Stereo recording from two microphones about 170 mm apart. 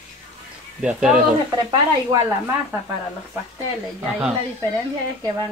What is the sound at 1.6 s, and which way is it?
Speech, 25° right (ahead or behind).